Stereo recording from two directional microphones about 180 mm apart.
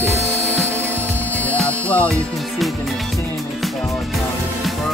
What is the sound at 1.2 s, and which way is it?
Music, 10° left (ahead or behind).